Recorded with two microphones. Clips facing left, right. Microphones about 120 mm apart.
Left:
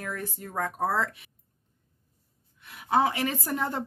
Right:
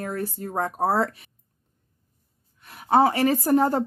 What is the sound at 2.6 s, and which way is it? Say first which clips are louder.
A woman's voice: right 5 dB; 40° right (ahead or behind).